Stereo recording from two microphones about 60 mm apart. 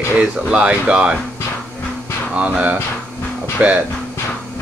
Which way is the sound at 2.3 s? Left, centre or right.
Right.